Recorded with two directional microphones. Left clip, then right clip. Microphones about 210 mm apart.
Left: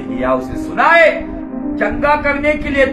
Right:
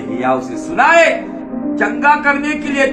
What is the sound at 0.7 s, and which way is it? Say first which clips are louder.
A man's voice: even; centre (ahead or behind).